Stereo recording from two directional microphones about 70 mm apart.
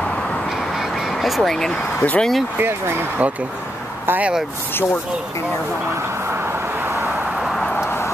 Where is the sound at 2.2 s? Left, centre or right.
Centre.